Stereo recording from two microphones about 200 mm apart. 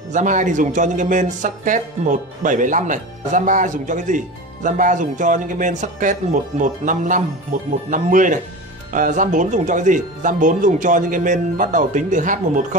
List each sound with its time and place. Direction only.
0.1 s speech: 40° right (ahead or behind)